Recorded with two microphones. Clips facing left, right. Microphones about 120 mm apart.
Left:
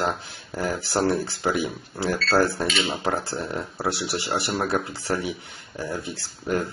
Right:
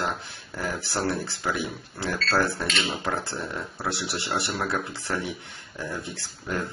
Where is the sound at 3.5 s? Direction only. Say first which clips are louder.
Left 5 dB; 25° left (ahead or behind).